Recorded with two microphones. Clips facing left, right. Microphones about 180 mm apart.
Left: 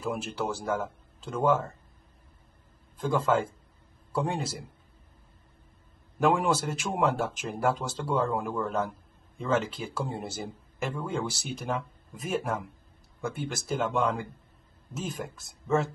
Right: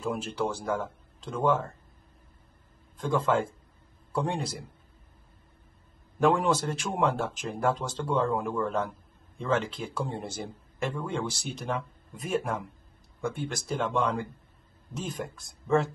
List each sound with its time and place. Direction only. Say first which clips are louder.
0.0 s a man's voice: right 1 dB; 5° left (ahead or behind)
3.0 s a man's voice: even; 5° left (ahead or behind)
6.1 s a man's voice: right 1 dB; 5° left (ahead or behind)